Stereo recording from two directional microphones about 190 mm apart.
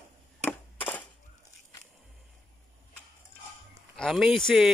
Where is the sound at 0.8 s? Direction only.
10° left (ahead or behind).